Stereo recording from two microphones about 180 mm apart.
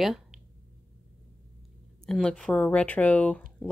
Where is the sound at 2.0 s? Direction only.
5° left (ahead or behind).